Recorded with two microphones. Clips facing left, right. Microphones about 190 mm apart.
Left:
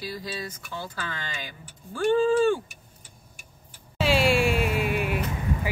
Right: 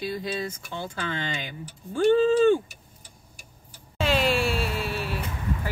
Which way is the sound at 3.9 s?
10° left (ahead or behind).